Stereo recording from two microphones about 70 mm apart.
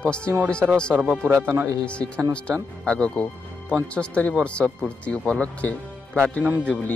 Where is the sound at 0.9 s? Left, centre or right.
Right.